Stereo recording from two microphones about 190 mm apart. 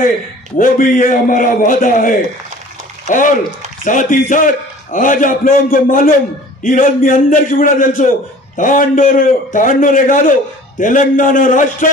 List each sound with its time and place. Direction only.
0.6 s a man's voice: 45° left (ahead or behind)